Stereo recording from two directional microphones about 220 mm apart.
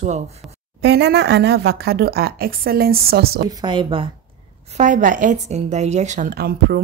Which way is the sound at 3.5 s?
20° right (ahead or behind).